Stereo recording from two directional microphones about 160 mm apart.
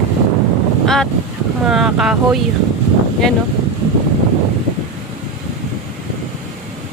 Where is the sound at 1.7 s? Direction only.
5° right (ahead or behind).